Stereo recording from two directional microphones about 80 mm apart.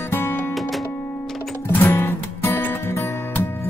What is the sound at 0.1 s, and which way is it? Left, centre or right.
Music, left.